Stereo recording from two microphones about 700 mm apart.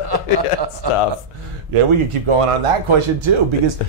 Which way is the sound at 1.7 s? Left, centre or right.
Right.